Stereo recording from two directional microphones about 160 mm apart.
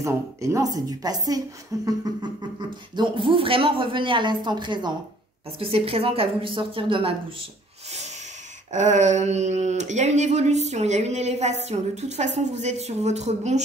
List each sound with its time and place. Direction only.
0.0 s speech: 20° right (ahead or behind)
3.0 s speech: 30° right (ahead or behind)
8.7 s speech: 45° right (ahead or behind)